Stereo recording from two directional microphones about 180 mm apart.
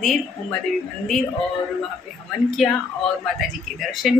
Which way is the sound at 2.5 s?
Centre (ahead or behind).